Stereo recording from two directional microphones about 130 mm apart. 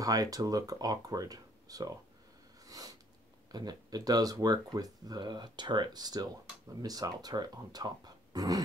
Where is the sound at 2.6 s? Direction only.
30° right (ahead or behind).